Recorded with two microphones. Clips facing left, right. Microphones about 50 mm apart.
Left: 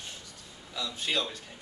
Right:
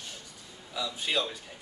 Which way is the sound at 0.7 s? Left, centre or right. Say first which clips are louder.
Right 1 dB; centre.